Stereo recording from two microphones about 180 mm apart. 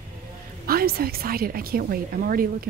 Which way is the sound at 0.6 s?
55° right (ahead or behind).